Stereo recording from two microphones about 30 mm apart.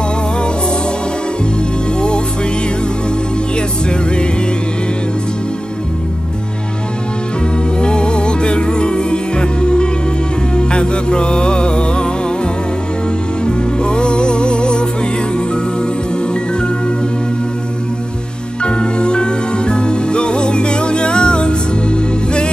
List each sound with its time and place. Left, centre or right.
2.0 s music: left
3.5 s music: left
7.8 s music: left
13.5 s music: left
18.6 s music: left